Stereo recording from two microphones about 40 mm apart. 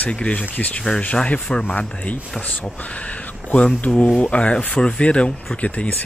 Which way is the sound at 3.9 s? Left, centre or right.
Left.